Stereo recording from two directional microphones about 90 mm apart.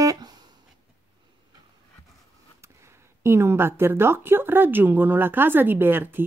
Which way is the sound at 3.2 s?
30° right (ahead or behind).